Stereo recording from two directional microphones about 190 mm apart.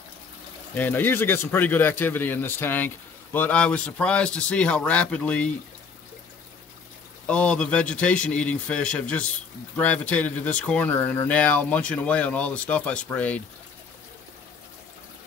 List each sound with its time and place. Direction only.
0.7 s speech: 10° left (ahead or behind)
7.2 s a man's voice: 5° left (ahead or behind)